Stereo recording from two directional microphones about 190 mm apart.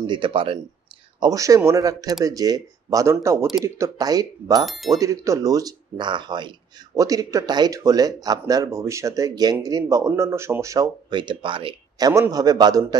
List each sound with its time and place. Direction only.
0.0 s speech: 25° right (ahead or behind)
1.2 s speech: 20° right (ahead or behind)
4.6 s speech: centre (ahead or behind)
4.9 s speech: 15° right (ahead or behind)